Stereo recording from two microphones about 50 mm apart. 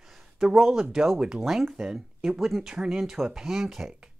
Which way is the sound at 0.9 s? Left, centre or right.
Centre.